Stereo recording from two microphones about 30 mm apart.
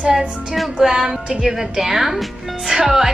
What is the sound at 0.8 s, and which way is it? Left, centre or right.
Speech, centre.